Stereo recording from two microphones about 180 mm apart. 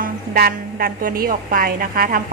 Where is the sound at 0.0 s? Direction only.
55° right (ahead or behind).